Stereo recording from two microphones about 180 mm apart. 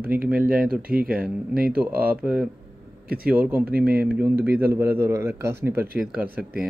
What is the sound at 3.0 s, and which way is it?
Speech, 55° right (ahead or behind).